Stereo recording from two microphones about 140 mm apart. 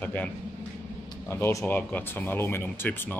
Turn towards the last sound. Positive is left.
turn(degrees=15)  # may be behind; listen again after turning